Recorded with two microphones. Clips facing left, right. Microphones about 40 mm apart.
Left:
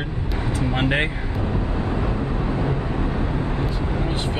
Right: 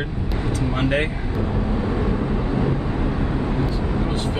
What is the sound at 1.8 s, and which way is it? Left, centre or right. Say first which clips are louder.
Vehicle: right 2 dB; left.